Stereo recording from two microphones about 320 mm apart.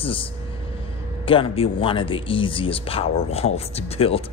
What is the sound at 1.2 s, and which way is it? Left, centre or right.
Speech, centre.